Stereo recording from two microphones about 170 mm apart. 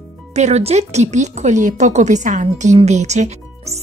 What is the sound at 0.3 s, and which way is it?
Speech, 40° right (ahead or behind).